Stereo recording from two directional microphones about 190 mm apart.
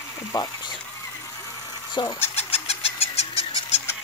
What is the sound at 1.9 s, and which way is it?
Bird, 20° left (ahead or behind).